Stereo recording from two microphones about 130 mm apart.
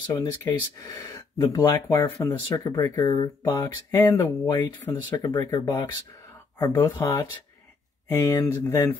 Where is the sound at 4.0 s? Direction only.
30° left (ahead or behind).